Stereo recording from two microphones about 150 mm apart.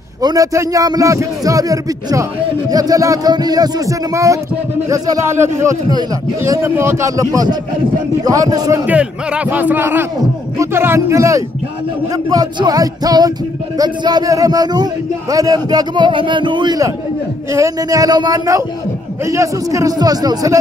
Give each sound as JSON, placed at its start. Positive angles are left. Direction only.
{"t": 0.2, "sound": "a man's voice", "side_deg": -25}
{"t": 8.8, "sound": "a man's voice", "side_deg": -10}